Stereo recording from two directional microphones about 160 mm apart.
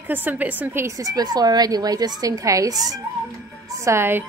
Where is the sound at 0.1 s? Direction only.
10° right (ahead or behind).